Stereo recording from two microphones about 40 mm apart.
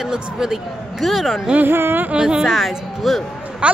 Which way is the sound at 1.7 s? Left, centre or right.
Right.